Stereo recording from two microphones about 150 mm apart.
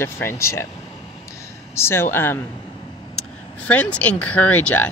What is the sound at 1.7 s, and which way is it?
Speech, 15° left (ahead or behind).